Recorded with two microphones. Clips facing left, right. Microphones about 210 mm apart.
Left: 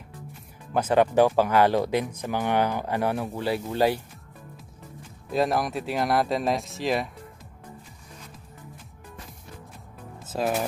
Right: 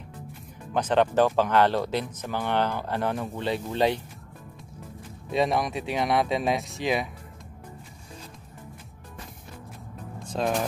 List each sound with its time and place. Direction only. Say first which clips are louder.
0.7 s speech: left 2 dB; 10° left (ahead or behind)
5.3 s speech: even; centre (ahead or behind)
10.1 s music: even; 5° left (ahead or behind)